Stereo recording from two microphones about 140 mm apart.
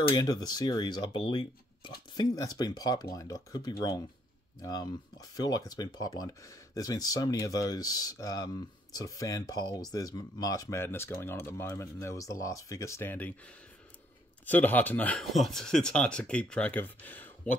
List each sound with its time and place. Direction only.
0.1 s speech: 30° left (ahead or behind)
14.4 s speech: 10° left (ahead or behind)